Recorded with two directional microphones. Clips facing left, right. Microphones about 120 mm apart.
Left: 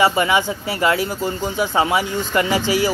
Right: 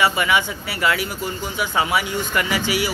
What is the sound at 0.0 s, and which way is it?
Speech, 30° left (ahead or behind).